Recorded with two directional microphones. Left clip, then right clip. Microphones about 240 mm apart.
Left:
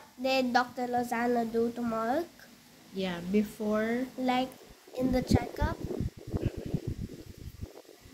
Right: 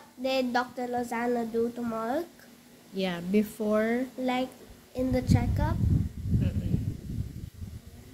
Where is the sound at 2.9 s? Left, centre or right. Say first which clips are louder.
Right 3 dB; right.